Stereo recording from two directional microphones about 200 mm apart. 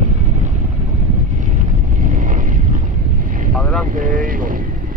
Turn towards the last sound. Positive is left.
turn(degrees=-45)  # may be behind; listen again after turning